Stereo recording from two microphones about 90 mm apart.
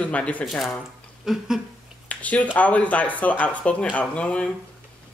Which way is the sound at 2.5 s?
15° left (ahead or behind).